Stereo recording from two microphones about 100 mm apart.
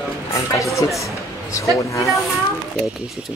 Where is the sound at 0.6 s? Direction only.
30° left (ahead or behind).